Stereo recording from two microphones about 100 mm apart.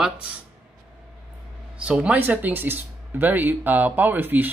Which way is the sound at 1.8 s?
10° right (ahead or behind).